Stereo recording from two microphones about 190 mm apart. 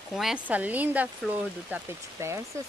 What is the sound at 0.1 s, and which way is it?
Speech, centre (ahead or behind).